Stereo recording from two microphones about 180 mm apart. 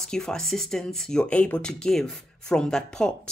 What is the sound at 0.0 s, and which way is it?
Speech, 5° left (ahead or behind).